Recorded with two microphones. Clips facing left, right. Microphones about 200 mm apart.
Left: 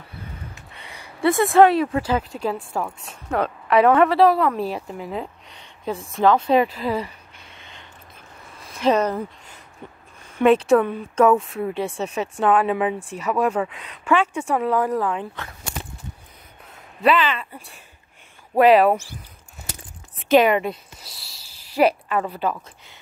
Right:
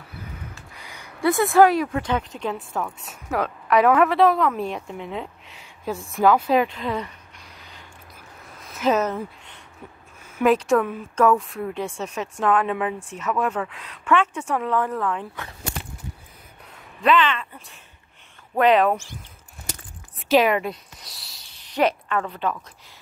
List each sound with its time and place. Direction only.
0.9 s a woman's voice: 5° left (ahead or behind)
3.1 s a woman's voice: 5° right (ahead or behind)
7.4 s a sound: 25° left (ahead or behind)
8.5 s speech: centre (ahead or behind)
10.3 s a woman's voice: centre (ahead or behind)
11.9 s speech: 30° left (ahead or behind)
12.4 s speech: 5° left (ahead or behind)
17.0 s speech: 5° left (ahead or behind)
18.6 s speech: 10° left (ahead or behind)
20.2 s speech: centre (ahead or behind)